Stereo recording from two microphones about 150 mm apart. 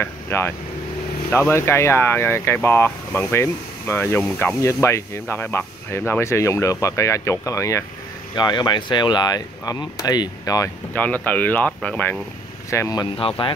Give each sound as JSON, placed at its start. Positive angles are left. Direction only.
{"t": 0.0, "sound": "speech", "side_deg": 15}
{"t": 11.2, "sound": "speech", "side_deg": 10}
{"t": 12.6, "sound": "speech", "side_deg": 20}